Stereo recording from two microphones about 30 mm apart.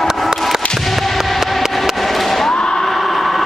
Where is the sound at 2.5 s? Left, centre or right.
Left.